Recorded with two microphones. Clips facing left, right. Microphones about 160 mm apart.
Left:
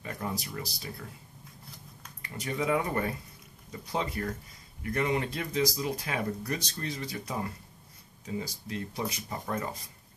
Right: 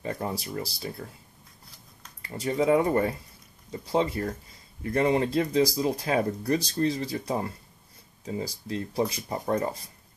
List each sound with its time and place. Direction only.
0.0 s speech: 30° right (ahead or behind)
2.2 s speech: 30° right (ahead or behind)
8.6 s speech: 30° right (ahead or behind)